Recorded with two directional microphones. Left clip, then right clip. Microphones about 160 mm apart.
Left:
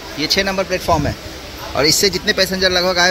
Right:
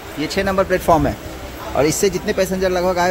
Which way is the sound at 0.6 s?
30° right (ahead or behind).